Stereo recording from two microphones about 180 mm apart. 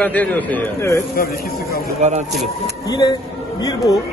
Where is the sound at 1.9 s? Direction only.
40° right (ahead or behind).